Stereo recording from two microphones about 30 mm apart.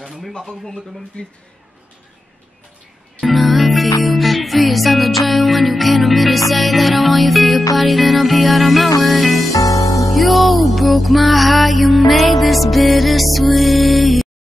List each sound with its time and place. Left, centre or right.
0.0 s a sound: centre
0.7 s speech: centre
3.2 s music: centre